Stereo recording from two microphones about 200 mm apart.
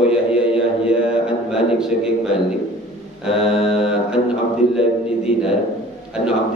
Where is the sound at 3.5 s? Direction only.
30° left (ahead or behind).